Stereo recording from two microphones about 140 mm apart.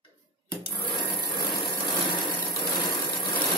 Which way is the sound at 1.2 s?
30° left (ahead or behind).